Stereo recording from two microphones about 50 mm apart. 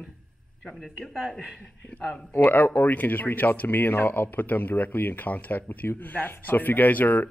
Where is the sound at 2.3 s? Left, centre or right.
Left.